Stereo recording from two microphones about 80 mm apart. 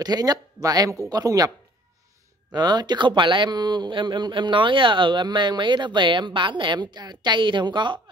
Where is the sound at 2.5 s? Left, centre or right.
Right.